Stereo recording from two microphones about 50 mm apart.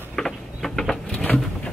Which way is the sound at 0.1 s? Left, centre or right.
Centre.